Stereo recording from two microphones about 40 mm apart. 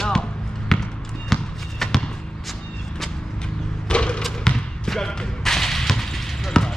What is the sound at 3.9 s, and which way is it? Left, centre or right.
Basketball bounce, left.